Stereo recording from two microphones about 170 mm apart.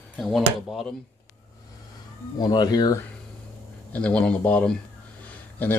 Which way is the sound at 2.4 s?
25° left (ahead or behind).